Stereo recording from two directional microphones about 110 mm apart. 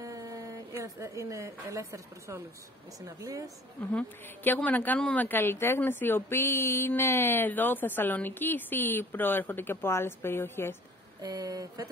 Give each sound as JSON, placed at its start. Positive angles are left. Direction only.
{"t": 0.0, "sound": "a sound", "side_deg": -30}
{"t": 0.9, "sound": "a woman's voice", "side_deg": -25}
{"t": 3.9, "sound": "a woman's voice", "side_deg": 15}
{"t": 11.2, "sound": "speech", "side_deg": -35}